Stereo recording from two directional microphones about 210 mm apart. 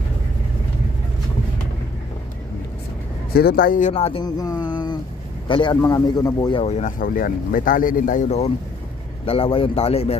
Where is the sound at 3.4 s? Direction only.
45° left (ahead or behind).